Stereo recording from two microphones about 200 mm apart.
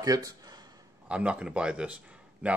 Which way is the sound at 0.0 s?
20° right (ahead or behind).